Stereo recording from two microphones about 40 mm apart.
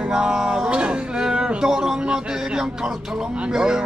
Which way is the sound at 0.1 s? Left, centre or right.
Centre.